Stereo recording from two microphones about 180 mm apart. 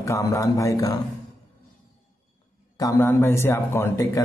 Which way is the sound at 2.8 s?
15° left (ahead or behind).